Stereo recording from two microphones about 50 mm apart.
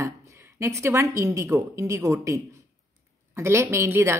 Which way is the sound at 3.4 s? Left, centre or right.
Right.